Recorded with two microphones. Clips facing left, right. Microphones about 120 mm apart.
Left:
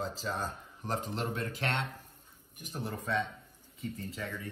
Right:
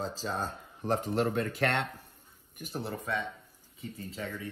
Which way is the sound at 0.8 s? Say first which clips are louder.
Right 6 dB; 45° right (ahead or behind).